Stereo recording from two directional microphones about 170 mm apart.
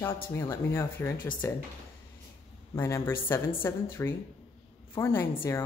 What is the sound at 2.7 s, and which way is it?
A woman's voice, 15° left (ahead or behind).